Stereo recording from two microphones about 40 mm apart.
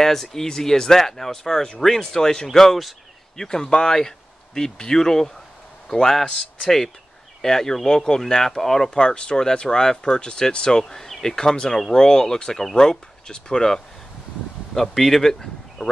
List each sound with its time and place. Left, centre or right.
0.0 s speech: centre
3.3 s a man's voice: centre